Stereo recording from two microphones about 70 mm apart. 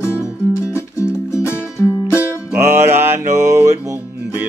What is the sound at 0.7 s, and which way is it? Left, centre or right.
Music, left.